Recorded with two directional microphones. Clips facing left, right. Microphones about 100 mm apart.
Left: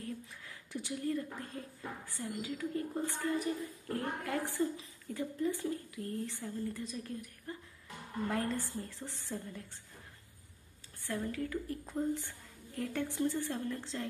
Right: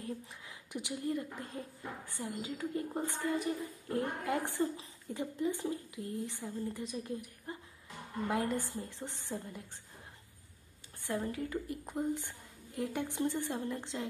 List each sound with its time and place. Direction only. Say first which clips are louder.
0.0 s a woman's voice: right 1 dB; 20° right (ahead or behind)
11.0 s a woman's voice: right 1 dB; 20° right (ahead or behind)